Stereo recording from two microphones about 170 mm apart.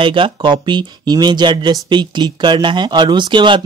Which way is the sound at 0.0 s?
30° right (ahead or behind).